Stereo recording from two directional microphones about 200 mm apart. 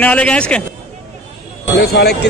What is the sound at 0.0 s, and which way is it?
Speech, 5° left (ahead or behind).